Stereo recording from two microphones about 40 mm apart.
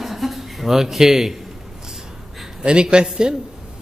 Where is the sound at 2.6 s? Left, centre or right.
Right.